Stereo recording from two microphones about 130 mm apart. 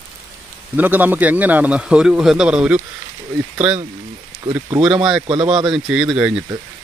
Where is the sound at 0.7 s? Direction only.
15° right (ahead or behind).